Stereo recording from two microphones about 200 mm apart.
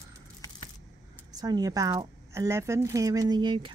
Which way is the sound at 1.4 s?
20° right (ahead or behind).